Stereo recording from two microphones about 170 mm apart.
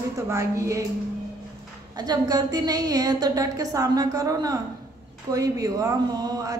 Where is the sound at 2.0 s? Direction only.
25° right (ahead or behind).